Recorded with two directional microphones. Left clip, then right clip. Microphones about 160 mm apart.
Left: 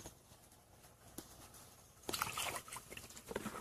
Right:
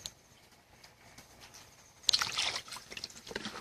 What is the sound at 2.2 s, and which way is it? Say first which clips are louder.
Boat: right 8 dB; 10° right (ahead or behind).